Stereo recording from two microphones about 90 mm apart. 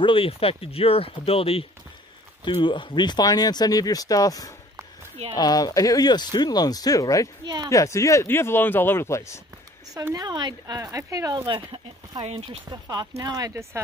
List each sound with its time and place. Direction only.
0.0 s speech: 80° left
2.4 s speech: 65° left (ahead or behind); by 7.2 s 40° left (ahead or behind)
7.4 s speech: 50° right (ahead or behind)
7.7 s a man's voice: 35° left (ahead or behind)
10.1 s speech: 50° right (ahead or behind)
10.8 s speech: 35° right (ahead or behind)
11.4 s speech: 65° right (ahead or behind)
12.6 s speech: 45° right (ahead or behind)